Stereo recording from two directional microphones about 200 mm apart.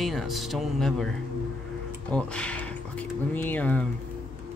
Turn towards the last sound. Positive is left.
turn(degrees=10)  # may be behind; listen again after turning